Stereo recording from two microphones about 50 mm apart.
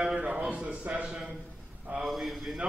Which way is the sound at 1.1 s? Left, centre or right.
Centre.